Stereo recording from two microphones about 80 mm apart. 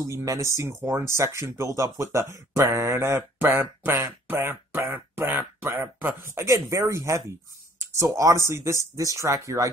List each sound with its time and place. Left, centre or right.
0.0 s speech: right